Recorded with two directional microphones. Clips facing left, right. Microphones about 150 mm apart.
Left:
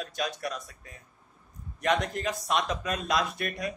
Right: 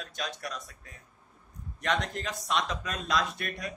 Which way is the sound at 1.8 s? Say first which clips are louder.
Left 4 dB; 10° left (ahead or behind).